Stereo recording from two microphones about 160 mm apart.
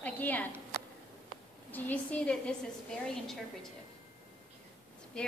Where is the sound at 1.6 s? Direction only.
10° left (ahead or behind).